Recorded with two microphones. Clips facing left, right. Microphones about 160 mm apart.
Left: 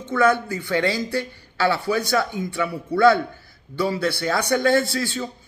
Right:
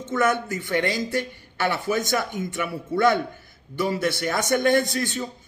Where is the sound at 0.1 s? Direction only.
20° right (ahead or behind).